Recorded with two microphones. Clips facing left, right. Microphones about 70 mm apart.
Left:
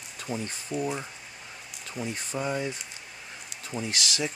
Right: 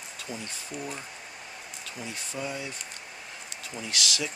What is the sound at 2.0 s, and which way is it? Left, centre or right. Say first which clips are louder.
Speech: left 4 dB; left.